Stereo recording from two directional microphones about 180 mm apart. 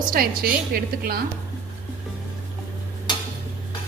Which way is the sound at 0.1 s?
55° right (ahead or behind).